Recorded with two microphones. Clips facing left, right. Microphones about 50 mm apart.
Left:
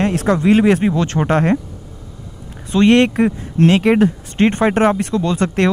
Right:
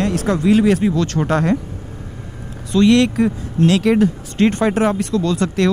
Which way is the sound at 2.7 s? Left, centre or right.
Left.